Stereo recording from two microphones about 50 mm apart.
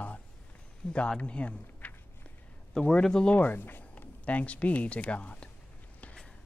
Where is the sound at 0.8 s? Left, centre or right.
Left.